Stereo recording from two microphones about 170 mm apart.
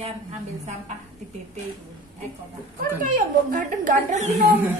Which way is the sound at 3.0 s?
50° right (ahead or behind).